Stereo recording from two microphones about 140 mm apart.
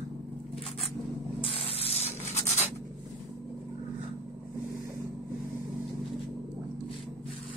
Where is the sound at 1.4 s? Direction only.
45° left (ahead or behind).